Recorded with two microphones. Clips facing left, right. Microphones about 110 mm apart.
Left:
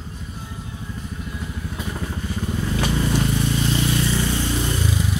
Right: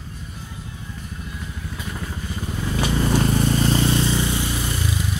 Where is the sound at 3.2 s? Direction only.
40° right (ahead or behind).